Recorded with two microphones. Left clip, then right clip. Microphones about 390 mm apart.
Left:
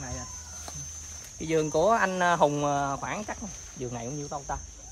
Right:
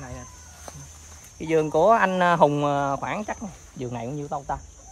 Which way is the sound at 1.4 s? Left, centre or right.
Centre.